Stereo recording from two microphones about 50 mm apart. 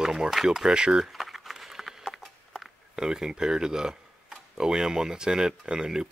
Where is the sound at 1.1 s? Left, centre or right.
Centre.